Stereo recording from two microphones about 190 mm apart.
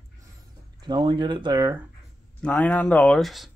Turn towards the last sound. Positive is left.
turn(degrees=0)  # may be behind; listen again after turning